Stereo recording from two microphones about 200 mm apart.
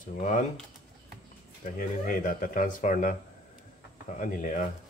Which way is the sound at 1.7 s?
40° left (ahead or behind).